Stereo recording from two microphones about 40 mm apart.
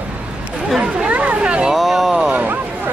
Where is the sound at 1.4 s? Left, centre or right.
Right.